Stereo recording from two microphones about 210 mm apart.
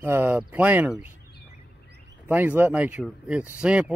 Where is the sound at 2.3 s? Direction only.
10° right (ahead or behind).